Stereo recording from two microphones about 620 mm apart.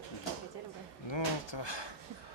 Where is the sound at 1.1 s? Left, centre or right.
Left.